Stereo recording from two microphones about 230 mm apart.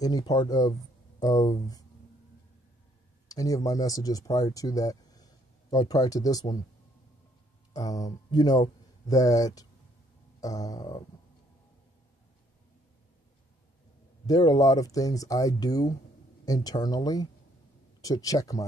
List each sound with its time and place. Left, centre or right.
0.0 s speech: centre
3.3 s speech: centre
7.7 s speech: centre
14.2 s speech: centre